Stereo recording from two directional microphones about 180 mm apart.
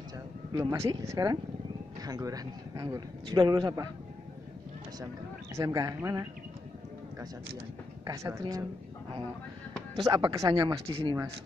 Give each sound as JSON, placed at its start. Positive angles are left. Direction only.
{"t": 0.6, "sound": "a man's voice", "side_deg": -20}
{"t": 5.0, "sound": "speech", "side_deg": -15}
{"t": 8.0, "sound": "speech", "side_deg": -15}
{"t": 9.9, "sound": "a man's voice", "side_deg": -25}